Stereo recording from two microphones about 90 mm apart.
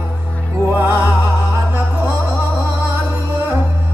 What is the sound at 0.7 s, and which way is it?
Music, 20° right (ahead or behind).